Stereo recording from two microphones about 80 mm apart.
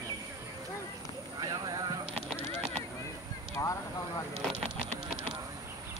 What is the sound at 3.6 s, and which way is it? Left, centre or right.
Vehicle, left.